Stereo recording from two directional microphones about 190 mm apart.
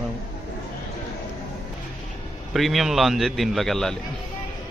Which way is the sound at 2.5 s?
Centre (ahead or behind).